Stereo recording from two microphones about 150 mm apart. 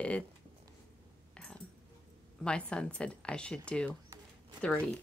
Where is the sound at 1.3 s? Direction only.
5° left (ahead or behind).